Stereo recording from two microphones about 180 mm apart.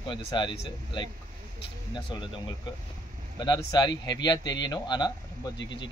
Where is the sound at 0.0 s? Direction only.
25° left (ahead or behind).